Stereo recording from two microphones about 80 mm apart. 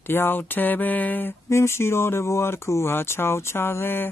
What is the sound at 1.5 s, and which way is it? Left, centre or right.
Speech, left.